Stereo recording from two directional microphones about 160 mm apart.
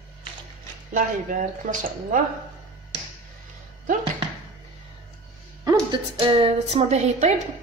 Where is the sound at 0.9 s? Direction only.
55° right (ahead or behind).